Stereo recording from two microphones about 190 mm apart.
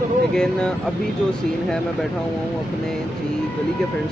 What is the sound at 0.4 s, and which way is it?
Speech, 5° left (ahead or behind).